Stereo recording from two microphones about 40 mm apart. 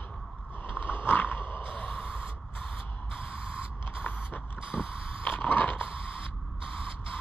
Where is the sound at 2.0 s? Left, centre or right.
Left.